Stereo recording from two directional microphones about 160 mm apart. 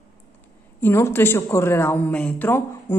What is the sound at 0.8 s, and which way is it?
A woman's voice, 15° left (ahead or behind).